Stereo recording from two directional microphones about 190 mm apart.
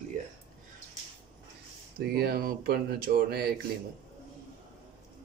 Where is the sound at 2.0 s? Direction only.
55° right (ahead or behind).